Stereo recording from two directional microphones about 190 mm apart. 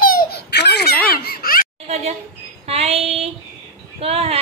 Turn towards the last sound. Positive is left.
turn(degrees=-30)  # may be behind; listen again after turning